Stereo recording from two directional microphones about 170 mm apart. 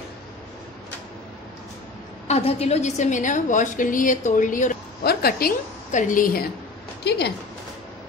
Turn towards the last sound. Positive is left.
turn(degrees=70)  # may be behind; listen again after turning